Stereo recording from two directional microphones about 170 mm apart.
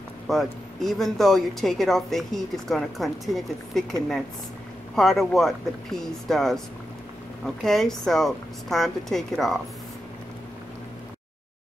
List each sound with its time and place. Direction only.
0.3 s speech: centre (ahead or behind)